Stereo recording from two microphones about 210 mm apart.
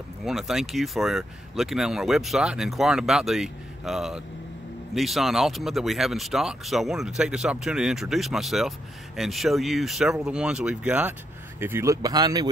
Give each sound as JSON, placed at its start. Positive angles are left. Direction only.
{"t": 0.2, "sound": "speech", "side_deg": 0}